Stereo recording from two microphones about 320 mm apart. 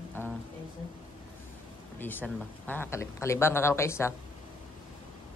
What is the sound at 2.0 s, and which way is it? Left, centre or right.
Speech, centre.